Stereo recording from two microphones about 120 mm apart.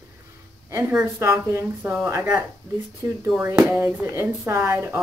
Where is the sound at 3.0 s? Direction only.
30° right (ahead or behind).